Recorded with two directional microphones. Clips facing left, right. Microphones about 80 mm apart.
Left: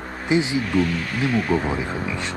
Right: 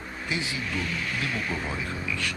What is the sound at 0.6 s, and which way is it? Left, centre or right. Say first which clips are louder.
Speech: left 10 dB; left.